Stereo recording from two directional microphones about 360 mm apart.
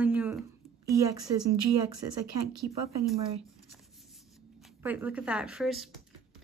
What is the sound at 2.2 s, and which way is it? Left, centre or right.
Speech, right.